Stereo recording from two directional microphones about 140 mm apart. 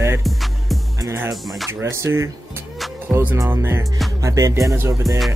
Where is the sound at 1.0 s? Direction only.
20° right (ahead or behind).